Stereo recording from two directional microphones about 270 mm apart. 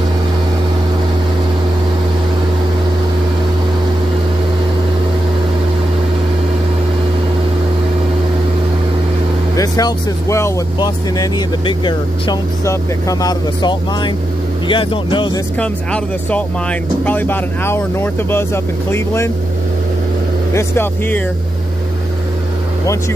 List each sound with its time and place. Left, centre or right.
9.6 s speech: centre
15.6 s speech: centre
20.5 s speech: centre